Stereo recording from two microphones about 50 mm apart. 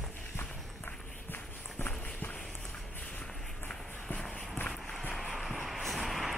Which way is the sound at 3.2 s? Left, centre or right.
Centre.